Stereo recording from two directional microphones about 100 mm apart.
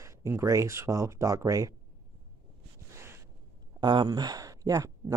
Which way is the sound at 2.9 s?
25° right (ahead or behind).